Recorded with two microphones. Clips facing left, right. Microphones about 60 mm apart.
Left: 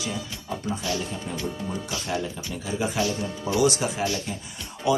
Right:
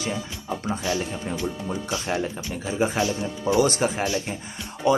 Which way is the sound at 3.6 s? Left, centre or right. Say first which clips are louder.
Even; right.